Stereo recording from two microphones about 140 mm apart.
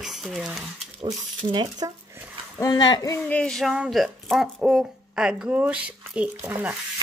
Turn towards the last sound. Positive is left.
turn(degrees=-10)  # may be behind; listen again after turning